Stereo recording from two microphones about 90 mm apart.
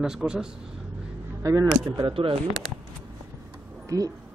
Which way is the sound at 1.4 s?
40° right (ahead or behind).